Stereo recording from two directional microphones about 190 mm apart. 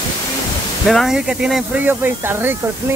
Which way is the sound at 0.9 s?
Centre (ahead or behind).